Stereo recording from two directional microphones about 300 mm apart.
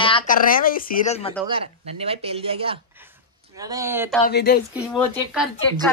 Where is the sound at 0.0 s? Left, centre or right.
Centre.